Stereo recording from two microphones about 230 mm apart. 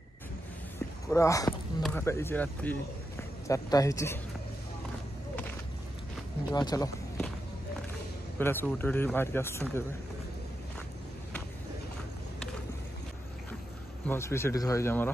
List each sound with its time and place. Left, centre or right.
1.1 s a man's voice: centre
6.5 s a man's voice: centre
8.4 s a man's voice: centre
14.0 s a man's voice: centre